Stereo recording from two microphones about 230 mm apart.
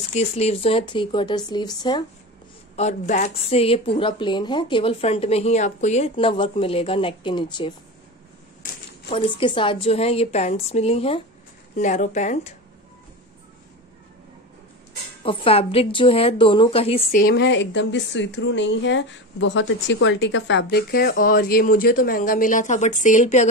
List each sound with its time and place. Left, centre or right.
0.1 s speech: left
2.7 s speech: left
9.1 s a woman's voice: left
15.2 s a woman's voice: left